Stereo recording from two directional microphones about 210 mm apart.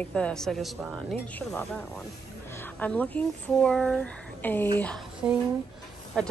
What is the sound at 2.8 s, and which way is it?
Speech, 5° left (ahead or behind).